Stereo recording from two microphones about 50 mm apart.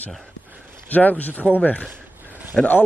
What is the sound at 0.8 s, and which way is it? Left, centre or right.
A man's voice, left.